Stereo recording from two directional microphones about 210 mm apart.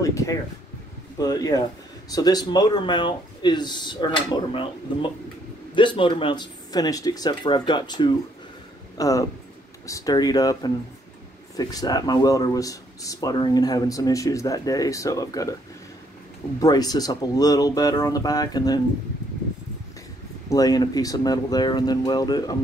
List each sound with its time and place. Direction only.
0.0 s speech: 15° left (ahead or behind)
16.5 s speech: 15° left (ahead or behind)
20.4 s speech: 15° left (ahead or behind)